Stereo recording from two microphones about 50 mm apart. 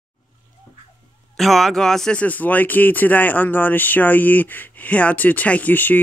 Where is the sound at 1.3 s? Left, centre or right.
Centre.